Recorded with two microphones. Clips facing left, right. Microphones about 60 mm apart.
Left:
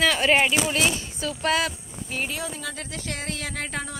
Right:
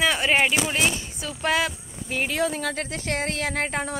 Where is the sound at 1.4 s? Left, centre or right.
Right.